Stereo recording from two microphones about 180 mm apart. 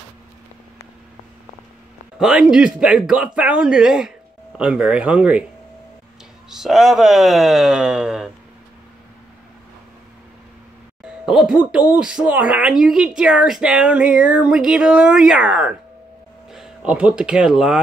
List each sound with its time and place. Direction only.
2.1 s speech: 5° right (ahead or behind)
6.5 s speech: centre (ahead or behind)
11.2 s speech: 5° right (ahead or behind)